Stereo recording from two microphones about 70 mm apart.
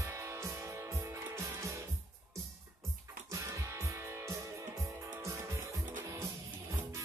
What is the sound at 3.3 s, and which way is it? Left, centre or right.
Music, right.